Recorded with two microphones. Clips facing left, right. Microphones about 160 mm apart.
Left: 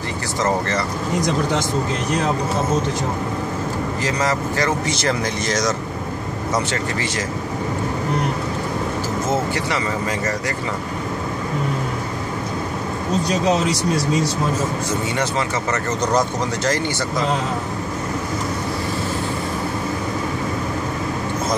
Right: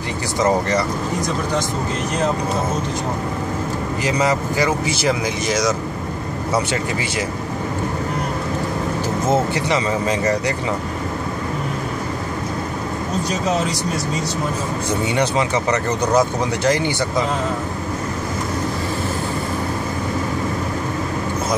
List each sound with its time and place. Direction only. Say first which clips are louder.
0.4 s speech: right 3 dB; 15° right (ahead or behind)
4.0 s speech: right 3 dB; 15° right (ahead or behind)
9.5 s speech: right 3 dB; 20° right (ahead or behind)
14.9 s speech: right 3 dB; 15° right (ahead or behind)